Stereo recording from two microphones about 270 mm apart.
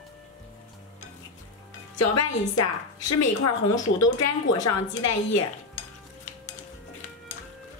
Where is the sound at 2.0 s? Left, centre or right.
Left.